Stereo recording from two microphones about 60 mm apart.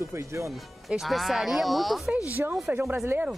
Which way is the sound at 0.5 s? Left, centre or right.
Centre.